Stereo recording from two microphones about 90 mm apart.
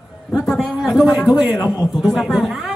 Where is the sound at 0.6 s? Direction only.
5° right (ahead or behind).